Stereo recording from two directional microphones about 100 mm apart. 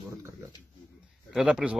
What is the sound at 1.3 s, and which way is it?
Speech, 10° right (ahead or behind).